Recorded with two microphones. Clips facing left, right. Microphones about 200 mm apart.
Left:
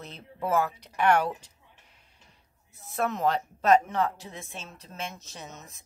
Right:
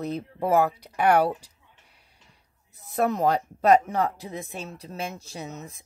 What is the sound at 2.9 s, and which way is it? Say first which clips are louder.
Speech: right 4 dB; 35° right (ahead or behind).